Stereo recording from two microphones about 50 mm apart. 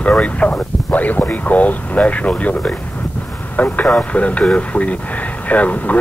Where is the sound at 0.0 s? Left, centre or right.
Left.